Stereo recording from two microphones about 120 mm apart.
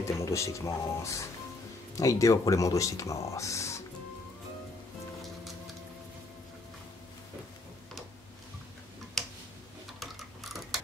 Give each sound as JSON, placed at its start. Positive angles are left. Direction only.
{"t": 0.0, "sound": "speech", "side_deg": 25}
{"t": 9.2, "sound": "tick-tock", "side_deg": 5}
{"t": 9.9, "sound": "a sound", "side_deg": 0}